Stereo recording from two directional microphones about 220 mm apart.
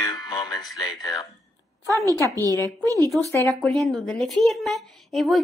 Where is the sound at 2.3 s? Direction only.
15° right (ahead or behind).